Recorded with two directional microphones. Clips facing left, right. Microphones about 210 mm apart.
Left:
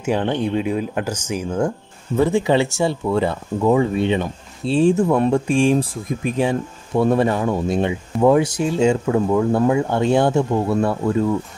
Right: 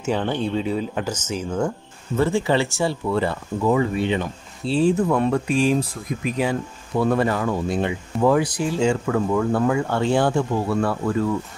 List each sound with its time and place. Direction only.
0.0 s speech: 10° left (ahead or behind); by 5.9 s 30° left (ahead or behind)
7.0 s speech: 25° left (ahead or behind)